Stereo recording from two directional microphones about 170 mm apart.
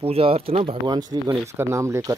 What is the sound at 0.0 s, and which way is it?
Speech, 35° right (ahead or behind).